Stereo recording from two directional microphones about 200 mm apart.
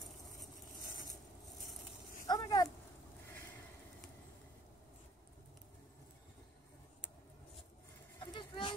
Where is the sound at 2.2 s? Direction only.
20° left (ahead or behind).